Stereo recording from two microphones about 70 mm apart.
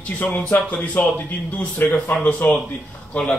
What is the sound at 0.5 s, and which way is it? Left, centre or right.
A man's voice, left.